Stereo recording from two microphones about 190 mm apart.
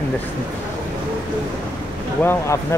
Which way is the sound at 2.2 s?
15° left (ahead or behind).